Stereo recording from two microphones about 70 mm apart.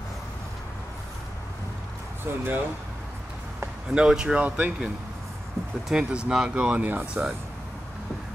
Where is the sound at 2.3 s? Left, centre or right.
Right.